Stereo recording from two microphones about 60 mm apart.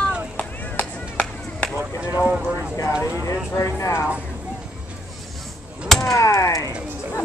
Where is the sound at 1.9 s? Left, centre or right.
Right.